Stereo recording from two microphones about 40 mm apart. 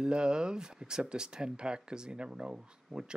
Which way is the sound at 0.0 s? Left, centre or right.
Right.